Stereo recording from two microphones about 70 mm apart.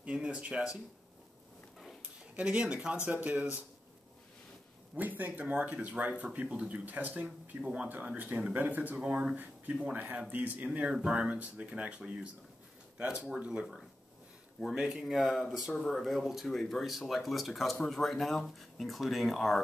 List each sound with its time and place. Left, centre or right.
0.0 s speech: centre
2.3 s speech: centre
4.9 s speech: right
7.2 s speech: centre
8.6 s speech: right
9.0 s speech: centre